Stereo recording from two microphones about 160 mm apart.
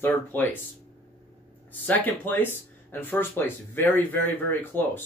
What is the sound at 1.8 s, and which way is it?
Speech, 10° left (ahead or behind).